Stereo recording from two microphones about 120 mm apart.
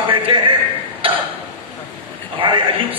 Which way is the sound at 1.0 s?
50° right (ahead or behind).